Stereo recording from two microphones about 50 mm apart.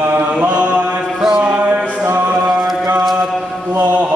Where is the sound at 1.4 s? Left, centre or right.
Right.